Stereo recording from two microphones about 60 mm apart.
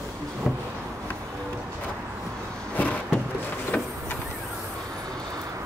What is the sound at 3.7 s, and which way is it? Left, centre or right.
Vehicle, left.